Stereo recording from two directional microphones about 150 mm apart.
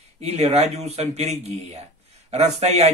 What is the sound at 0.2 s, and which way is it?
Speech, 45° right (ahead or behind).